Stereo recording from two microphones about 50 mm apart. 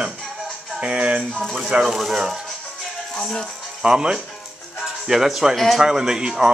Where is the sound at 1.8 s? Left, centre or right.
Centre.